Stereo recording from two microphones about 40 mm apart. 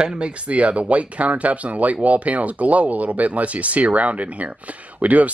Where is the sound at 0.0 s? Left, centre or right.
Right.